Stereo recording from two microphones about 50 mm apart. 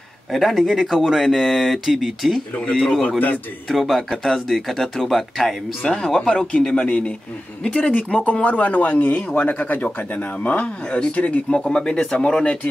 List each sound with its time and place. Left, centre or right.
0.3 s speech: centre
3.6 s speech: centre
5.9 s speech: centre; by 11.4 s left
11.5 s speech: centre